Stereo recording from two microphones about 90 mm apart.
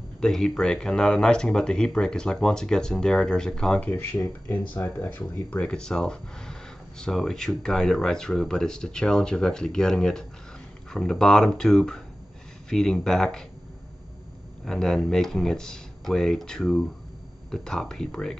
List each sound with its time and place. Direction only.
0.2 s speech: 5° left (ahead or behind)
5.7 s speech: 10° left (ahead or behind)
14.6 s speech: 5° left (ahead or behind)